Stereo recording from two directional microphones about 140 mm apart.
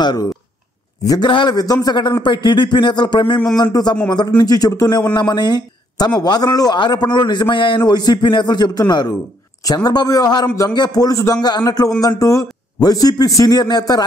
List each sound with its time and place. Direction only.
0.0 s a man's voice: 30° left (ahead or behind)